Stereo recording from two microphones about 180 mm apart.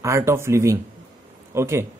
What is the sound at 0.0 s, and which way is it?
Speech, 15° right (ahead or behind).